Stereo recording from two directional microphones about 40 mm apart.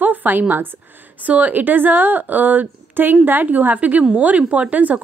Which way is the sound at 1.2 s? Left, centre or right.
Right.